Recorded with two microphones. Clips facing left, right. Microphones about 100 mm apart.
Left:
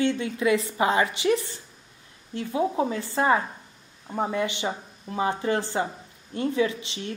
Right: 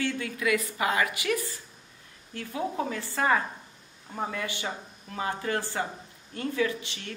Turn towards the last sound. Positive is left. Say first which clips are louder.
# left 3 dB
turn(degrees=20)  # may be behind; listen again after turning